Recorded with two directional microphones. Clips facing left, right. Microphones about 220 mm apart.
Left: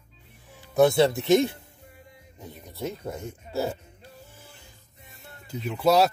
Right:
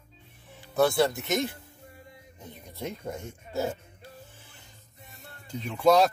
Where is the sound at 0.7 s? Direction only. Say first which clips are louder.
Left 4 dB; 20° left (ahead or behind).